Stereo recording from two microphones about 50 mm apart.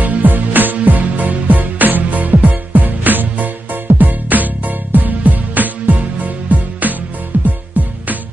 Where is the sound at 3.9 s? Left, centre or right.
Right.